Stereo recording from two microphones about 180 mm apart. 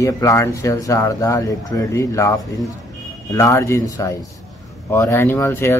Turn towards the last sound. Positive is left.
turn(degrees=15)  # may be behind; listen again after turning